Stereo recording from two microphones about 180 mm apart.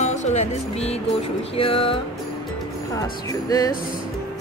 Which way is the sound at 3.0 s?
20° left (ahead or behind).